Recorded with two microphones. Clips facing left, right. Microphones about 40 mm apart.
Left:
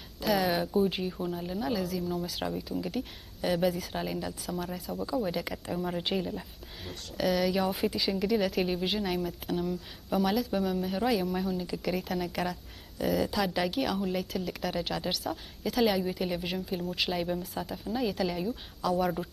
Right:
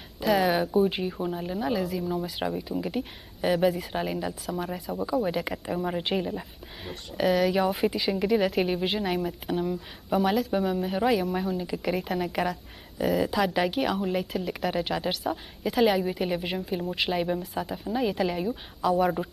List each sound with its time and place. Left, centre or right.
0.2 s a woman's voice: centre